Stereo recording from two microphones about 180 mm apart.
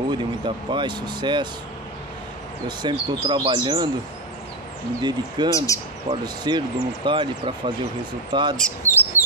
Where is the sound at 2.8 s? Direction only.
25° right (ahead or behind).